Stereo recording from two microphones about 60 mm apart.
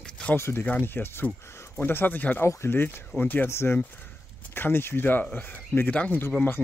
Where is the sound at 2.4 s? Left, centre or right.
Left.